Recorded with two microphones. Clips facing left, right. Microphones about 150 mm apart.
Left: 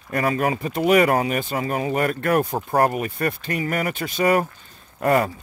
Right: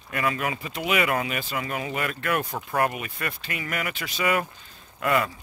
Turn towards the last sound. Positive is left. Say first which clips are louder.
# left 5 dB
turn(degrees=40)  # may be behind; listen again after turning